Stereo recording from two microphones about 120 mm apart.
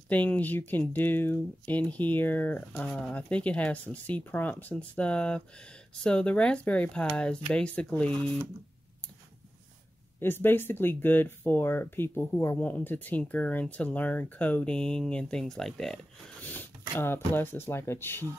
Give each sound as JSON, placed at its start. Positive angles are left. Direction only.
{"t": 0.1, "sound": "speech", "side_deg": 10}
{"t": 10.2, "sound": "speech", "side_deg": 20}